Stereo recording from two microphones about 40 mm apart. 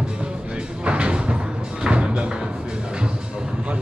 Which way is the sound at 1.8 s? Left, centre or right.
Right.